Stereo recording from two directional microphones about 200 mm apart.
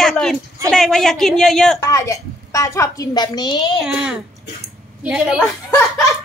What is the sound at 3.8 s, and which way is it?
A woman's voice, 5° right (ahead or behind).